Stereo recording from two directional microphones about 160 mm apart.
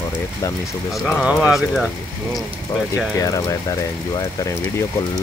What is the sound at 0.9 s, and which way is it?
Speech, centre (ahead or behind).